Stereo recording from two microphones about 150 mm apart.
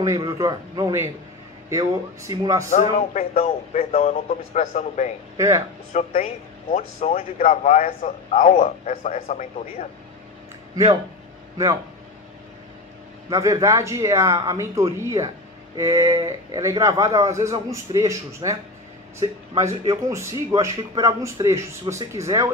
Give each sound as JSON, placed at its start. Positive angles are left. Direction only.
{"t": 0.0, "sound": "speech", "side_deg": -20}
{"t": 2.7, "sound": "a man's voice", "side_deg": 50}
{"t": 13.3, "sound": "speech", "side_deg": -20}